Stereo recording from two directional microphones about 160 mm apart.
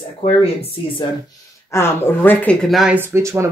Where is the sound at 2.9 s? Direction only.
15° right (ahead or behind).